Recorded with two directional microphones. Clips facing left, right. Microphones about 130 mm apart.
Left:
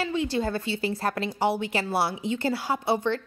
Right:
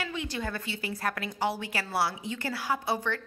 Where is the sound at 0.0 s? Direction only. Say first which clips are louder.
Left 8 dB; 30° left (ahead or behind).